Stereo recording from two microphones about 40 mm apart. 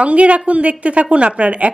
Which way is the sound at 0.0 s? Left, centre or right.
Right.